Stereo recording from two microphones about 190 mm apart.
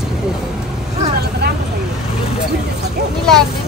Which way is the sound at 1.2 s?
55° right (ahead or behind).